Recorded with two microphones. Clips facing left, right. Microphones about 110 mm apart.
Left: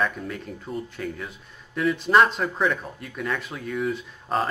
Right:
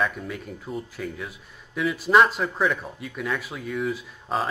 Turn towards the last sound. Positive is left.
turn(degrees=0)  # may be behind; listen again after turning